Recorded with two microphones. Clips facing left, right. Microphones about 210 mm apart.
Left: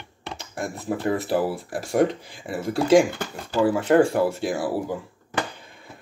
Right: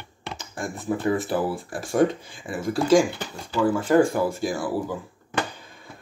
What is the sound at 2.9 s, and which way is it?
Speech, 50° left (ahead or behind).